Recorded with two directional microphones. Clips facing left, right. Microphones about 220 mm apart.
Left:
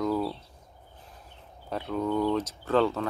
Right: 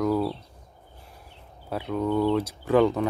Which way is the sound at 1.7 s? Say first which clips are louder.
Right 3 dB; 5° right (ahead or behind).